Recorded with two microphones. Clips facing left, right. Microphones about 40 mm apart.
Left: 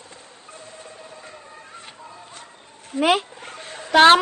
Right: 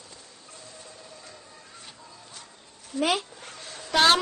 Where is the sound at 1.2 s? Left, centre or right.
Left.